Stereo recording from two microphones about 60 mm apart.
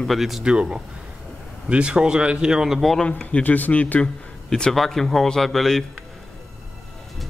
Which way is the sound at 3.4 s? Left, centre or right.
Left.